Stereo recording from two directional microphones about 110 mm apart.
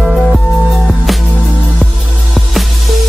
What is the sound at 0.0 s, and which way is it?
Music, centre (ahead or behind).